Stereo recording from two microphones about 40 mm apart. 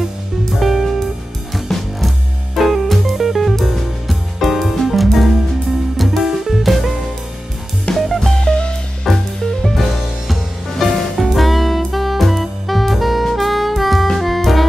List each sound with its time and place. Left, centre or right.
0.6 s music: centre
8.4 s music: left
9.0 s music: centre
9.8 s music: centre